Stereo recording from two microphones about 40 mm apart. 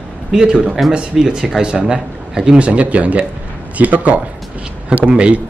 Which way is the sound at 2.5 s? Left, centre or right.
Right.